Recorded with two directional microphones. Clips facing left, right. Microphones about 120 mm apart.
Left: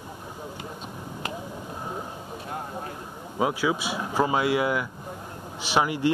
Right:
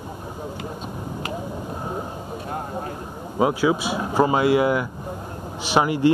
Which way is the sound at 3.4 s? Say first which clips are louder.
Right 5 dB; 45° right (ahead or behind).